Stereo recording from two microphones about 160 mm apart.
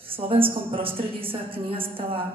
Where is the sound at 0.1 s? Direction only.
35° right (ahead or behind).